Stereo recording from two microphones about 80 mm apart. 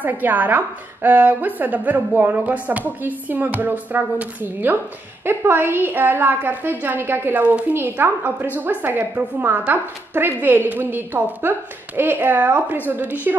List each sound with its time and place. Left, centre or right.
0.0 s a woman's voice: right